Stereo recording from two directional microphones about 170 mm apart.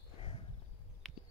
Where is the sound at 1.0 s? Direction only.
Centre (ahead or behind).